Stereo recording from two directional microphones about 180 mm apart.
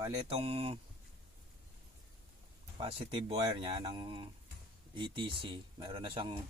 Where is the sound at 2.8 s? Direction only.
30° right (ahead or behind).